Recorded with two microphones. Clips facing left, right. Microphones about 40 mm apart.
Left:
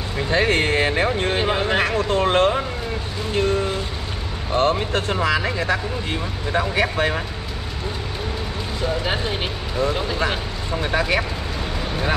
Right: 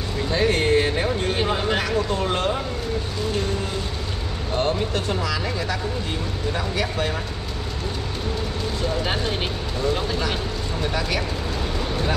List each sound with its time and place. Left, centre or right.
0.3 s speech: left
1.3 s speech: left
1.8 s a sound: left
4.6 s speech: left
9.0 s speech: centre
10.8 s speech: left